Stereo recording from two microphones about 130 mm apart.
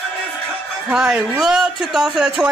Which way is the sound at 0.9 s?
5° right (ahead or behind).